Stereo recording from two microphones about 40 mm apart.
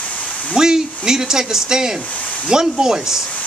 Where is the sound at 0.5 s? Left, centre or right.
Centre.